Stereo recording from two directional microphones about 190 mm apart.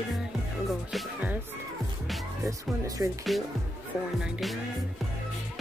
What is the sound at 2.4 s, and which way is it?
Speech, 15° right (ahead or behind).